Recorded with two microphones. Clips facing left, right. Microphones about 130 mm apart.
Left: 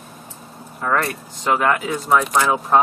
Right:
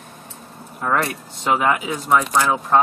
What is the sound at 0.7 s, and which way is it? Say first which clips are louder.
Speech: even; 10° right (ahead or behind).